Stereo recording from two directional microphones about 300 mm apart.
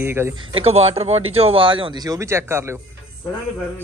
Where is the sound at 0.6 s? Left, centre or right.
Centre.